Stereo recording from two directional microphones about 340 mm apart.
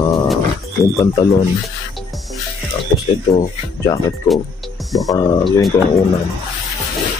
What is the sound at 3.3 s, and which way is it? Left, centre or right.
Speech, centre.